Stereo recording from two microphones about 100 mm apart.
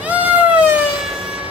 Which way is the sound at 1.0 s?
5° right (ahead or behind).